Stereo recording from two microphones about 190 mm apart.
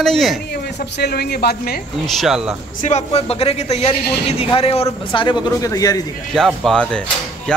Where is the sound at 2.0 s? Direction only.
Centre (ahead or behind).